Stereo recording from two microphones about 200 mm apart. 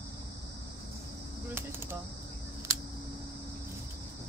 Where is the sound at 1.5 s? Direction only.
10° right (ahead or behind).